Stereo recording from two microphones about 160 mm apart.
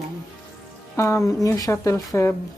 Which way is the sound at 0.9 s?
20° left (ahead or behind).